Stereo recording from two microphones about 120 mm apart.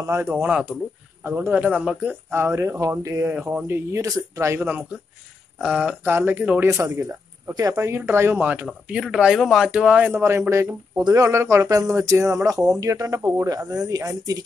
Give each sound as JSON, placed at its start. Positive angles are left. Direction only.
{"t": 0.0, "sound": "a man's voice", "side_deg": -20}
{"t": 0.3, "sound": "speech", "side_deg": -10}
{"t": 2.3, "sound": "a man's voice", "side_deg": -20}
{"t": 5.6, "sound": "a man's voice", "side_deg": -5}